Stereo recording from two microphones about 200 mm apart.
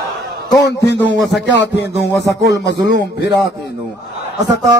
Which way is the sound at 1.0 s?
65° left (ahead or behind).